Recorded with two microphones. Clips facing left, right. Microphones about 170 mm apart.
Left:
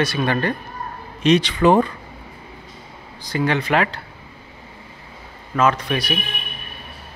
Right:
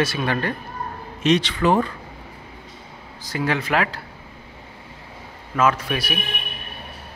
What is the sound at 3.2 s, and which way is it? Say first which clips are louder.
Speech: left 3 dB; 5° right (ahead or behind).